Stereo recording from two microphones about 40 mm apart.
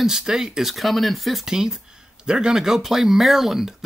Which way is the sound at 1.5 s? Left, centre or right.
Centre.